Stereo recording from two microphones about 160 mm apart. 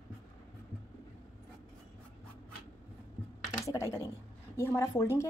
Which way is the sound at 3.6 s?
15° left (ahead or behind).